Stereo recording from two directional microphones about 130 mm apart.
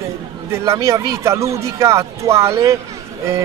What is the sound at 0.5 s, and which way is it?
Speech, 25° right (ahead or behind).